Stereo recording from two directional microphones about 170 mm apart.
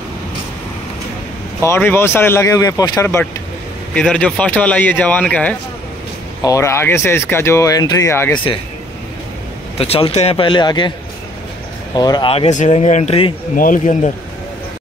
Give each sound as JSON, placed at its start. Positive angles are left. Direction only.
{"t": 1.6, "sound": "speech", "side_deg": 15}
{"t": 3.9, "sound": "speech", "side_deg": 5}
{"t": 9.8, "sound": "speech", "side_deg": 35}
{"t": 11.9, "sound": "speech", "side_deg": 25}
{"t": 13.6, "sound": "speech", "side_deg": 50}